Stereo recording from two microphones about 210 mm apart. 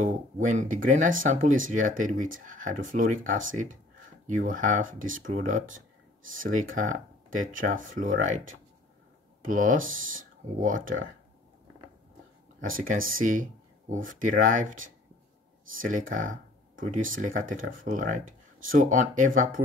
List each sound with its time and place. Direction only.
0.0 s speech: 35° right (ahead or behind)
6.7 s speech: 40° right (ahead or behind)
9.4 s speech: 40° right (ahead or behind)
12.5 s speech: 40° right (ahead or behind)
16.2 s a sound: 40° right (ahead or behind)
17.2 s speech: 40° right (ahead or behind)